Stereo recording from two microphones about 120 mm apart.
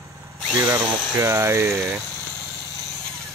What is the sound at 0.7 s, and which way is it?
Speech, 30° right (ahead or behind).